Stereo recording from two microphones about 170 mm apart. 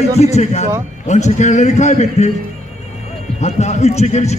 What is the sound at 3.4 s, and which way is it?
Speech, 40° left (ahead or behind).